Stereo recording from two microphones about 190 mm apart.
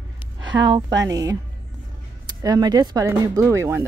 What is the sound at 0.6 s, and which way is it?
A woman's voice, 25° right (ahead or behind).